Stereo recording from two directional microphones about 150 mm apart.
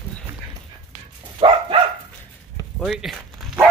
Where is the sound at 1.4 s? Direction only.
35° right (ahead or behind).